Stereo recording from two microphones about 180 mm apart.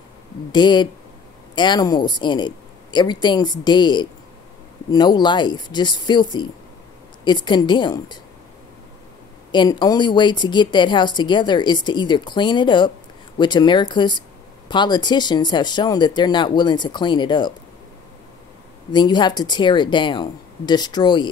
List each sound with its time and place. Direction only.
0.5 s a woman's voice: 25° left (ahead or behind)
9.5 s a woman's voice: 25° left (ahead or behind)
18.9 s a woman's voice: 25° left (ahead or behind)